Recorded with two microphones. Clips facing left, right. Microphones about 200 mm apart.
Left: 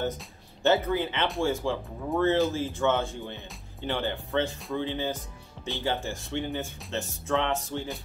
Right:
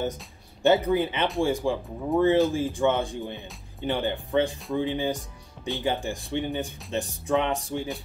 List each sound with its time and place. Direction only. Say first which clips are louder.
0.6 s speech: right 3 dB; 15° right (ahead or behind)